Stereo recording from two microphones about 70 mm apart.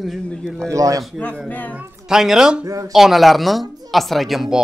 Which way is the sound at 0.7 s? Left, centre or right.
Right.